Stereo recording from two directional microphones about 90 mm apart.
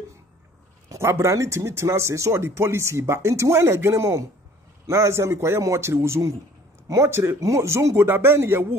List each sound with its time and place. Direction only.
0.8 s a man's voice: 30° right (ahead or behind)